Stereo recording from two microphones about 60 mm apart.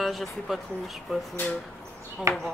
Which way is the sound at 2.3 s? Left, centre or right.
Right.